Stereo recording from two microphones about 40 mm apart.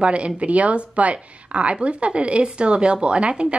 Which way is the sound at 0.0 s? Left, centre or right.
Right.